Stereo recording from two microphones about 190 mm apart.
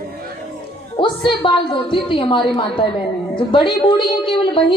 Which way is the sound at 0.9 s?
25° left (ahead or behind).